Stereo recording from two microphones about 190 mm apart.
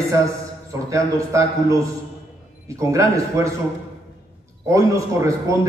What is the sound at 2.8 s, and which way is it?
Speech, 15° right (ahead or behind).